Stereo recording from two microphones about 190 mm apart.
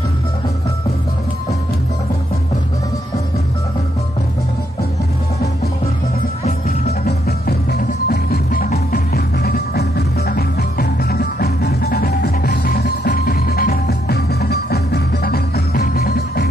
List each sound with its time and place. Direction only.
6.4 s music: 35° left (ahead or behind)
7.2 s music: 60° left (ahead or behind)
12.4 s music: 50° left (ahead or behind)